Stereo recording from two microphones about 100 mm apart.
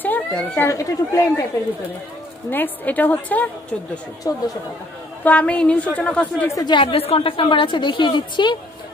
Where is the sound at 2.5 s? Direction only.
20° left (ahead or behind).